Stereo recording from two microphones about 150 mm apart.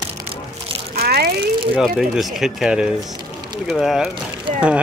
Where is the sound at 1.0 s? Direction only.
90° right.